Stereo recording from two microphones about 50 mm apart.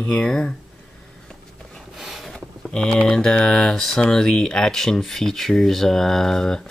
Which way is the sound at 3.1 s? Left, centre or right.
Centre.